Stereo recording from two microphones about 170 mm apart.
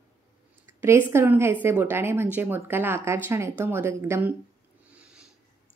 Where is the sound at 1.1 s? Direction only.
15° right (ahead or behind).